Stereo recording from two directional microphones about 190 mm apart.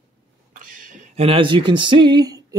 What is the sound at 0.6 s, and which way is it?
Speech, 45° right (ahead or behind).